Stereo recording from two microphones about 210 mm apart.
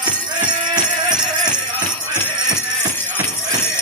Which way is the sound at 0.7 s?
20° right (ahead or behind).